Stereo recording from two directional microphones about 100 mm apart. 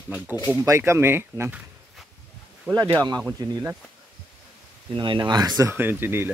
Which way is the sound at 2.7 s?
35° right (ahead or behind).